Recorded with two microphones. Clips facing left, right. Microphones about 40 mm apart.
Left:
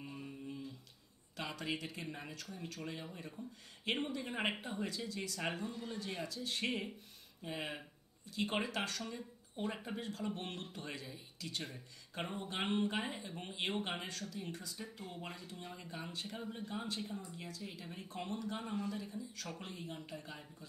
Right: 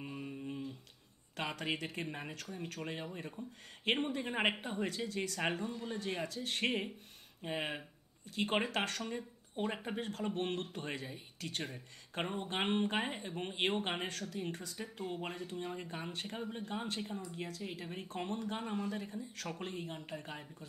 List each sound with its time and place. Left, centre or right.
0.0 s a sound: right
1.3 s a sound: right
2.0 s speech: right
3.4 s speech: right
5.5 s speech: right
5.9 s speech: right
15.0 s speech: right
16.3 s speech: right
16.6 s speech: right